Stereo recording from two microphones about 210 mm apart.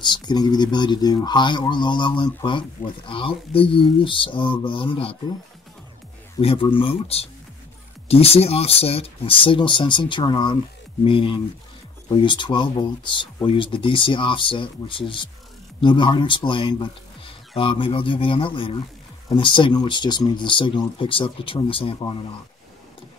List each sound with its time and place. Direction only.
0.0 s speech: 20° left (ahead or behind)
6.4 s speech: 25° left (ahead or behind)